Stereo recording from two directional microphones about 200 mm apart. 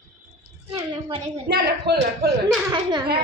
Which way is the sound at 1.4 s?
55° right (ahead or behind).